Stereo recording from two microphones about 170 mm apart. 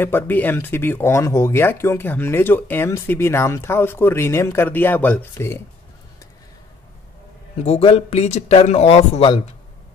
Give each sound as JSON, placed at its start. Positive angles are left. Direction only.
{"t": 0.0, "sound": "speech", "side_deg": 10}
{"t": 7.6, "sound": "speech", "side_deg": 35}